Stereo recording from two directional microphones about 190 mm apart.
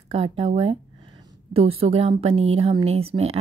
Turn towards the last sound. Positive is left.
turn(degrees=-30)  # may be behind; listen again after turning